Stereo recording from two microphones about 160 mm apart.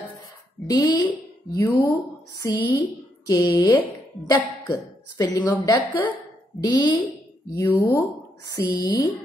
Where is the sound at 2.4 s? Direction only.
20° left (ahead or behind).